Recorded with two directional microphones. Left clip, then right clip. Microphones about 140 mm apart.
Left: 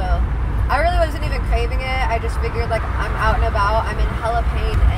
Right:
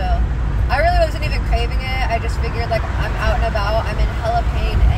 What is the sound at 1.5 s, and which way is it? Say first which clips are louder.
Vehicle: left 2 dB; 25° right (ahead or behind).